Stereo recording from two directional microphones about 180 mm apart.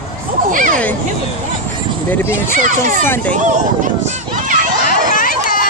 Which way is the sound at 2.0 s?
10° left (ahead or behind).